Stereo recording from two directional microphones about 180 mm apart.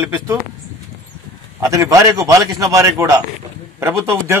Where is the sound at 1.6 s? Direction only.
15° right (ahead or behind).